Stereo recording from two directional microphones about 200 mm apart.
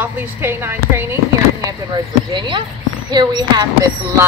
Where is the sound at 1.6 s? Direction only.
20° right (ahead or behind).